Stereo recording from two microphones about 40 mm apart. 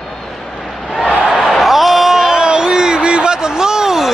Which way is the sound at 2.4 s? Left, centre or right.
Right.